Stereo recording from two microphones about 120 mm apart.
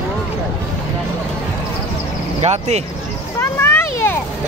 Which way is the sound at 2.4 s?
65° right (ahead or behind).